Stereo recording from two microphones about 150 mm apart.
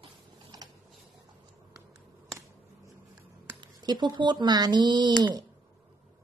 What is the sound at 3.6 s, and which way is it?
Speech, 30° right (ahead or behind).